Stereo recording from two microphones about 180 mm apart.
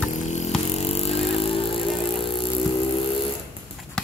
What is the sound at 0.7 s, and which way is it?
Music, 35° left (ahead or behind).